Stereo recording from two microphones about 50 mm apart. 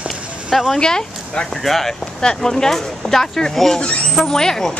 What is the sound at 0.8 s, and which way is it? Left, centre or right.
Speech, centre.